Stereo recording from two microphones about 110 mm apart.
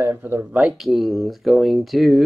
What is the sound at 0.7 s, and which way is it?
Speech, centre (ahead or behind).